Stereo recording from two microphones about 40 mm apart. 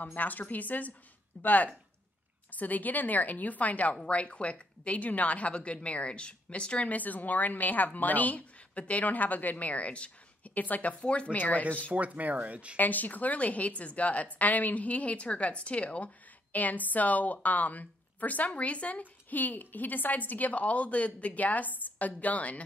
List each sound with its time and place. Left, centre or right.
0.0 s a woman's voice: left
6.9 s a woman's voice: left
11.0 s speech: left
11.3 s a woman's voice: left
11.9 s speech: right
12.7 s a woman's voice: left
16.5 s a woman's voice: left
19.3 s a woman's voice: left